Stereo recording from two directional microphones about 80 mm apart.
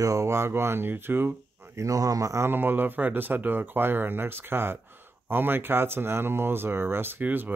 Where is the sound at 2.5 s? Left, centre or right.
Right.